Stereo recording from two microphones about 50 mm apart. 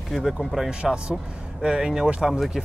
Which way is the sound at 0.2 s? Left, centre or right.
Centre.